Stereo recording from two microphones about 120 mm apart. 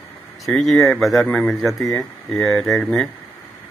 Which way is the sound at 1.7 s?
25° left (ahead or behind).